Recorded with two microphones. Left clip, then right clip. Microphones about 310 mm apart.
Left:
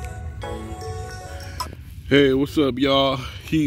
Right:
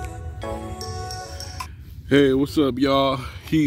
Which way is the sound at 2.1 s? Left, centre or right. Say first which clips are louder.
Left 1 dB; centre.